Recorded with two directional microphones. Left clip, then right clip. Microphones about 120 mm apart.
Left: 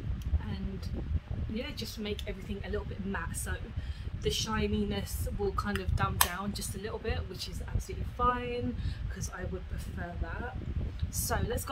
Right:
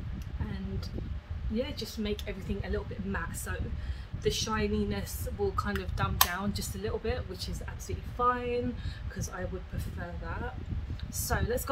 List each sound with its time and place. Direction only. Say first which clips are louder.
1.5 s speech: right 4 dB; 15° left (ahead or behind)
2.2 s speech: right 2 dB; 5° left (ahead or behind)
11.1 s a woman's voice: right 2 dB; 5° left (ahead or behind)